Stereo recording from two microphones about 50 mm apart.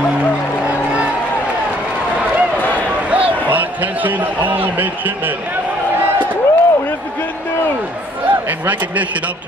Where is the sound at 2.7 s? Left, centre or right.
Right.